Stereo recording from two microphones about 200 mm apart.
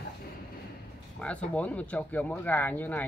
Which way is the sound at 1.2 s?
5° left (ahead or behind).